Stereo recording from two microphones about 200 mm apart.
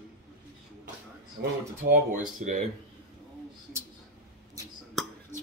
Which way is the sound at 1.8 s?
40° right (ahead or behind).